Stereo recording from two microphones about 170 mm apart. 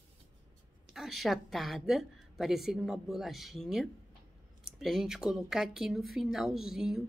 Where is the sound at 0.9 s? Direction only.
Centre (ahead or behind).